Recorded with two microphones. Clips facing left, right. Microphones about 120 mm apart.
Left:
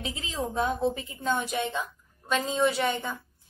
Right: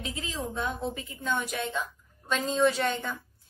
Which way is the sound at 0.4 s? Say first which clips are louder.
Left 6 dB; 35° left (ahead or behind).